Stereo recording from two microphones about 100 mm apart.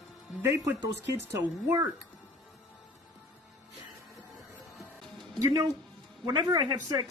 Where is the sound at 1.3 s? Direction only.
25° right (ahead or behind).